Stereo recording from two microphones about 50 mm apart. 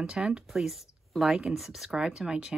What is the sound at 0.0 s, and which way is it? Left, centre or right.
Speech, centre.